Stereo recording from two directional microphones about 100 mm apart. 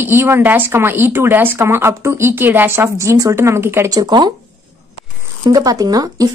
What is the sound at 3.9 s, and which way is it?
Speech, 45° right (ahead or behind).